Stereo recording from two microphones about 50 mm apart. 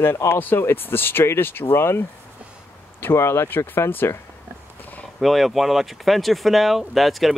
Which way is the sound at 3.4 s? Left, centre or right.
Left.